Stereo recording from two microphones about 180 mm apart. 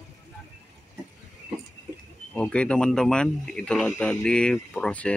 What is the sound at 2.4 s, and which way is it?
Speech, 5° left (ahead or behind).